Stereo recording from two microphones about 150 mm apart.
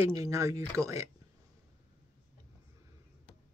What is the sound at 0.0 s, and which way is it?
Speech, 20° right (ahead or behind).